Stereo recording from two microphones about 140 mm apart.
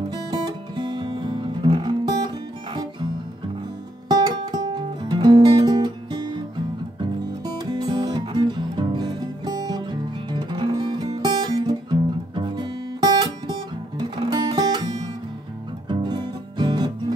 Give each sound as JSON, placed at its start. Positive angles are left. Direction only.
{"t": 0.1, "sound": "music", "side_deg": -30}
{"t": 4.1, "sound": "music", "side_deg": -30}
{"t": 7.4, "sound": "music", "side_deg": -30}